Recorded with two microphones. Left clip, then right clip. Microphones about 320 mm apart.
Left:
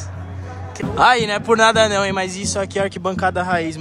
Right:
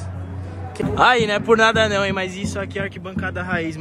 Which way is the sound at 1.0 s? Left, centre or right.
Centre.